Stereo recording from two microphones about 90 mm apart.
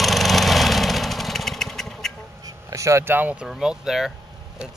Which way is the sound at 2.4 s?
35° right (ahead or behind).